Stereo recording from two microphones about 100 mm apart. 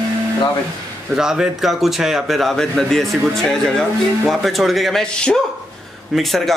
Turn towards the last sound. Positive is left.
turn(degrees=0)  # may be behind; listen again after turning